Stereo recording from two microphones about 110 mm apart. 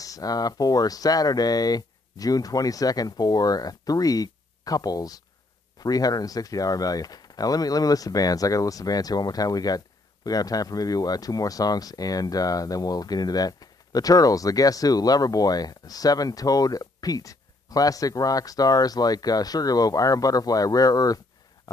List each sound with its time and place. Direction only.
0.0 s speech: 35° left (ahead or behind)